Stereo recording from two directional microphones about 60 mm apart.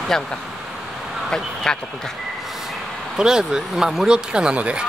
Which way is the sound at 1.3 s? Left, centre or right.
Centre.